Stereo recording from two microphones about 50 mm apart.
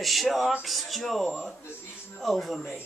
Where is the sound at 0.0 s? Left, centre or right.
Centre.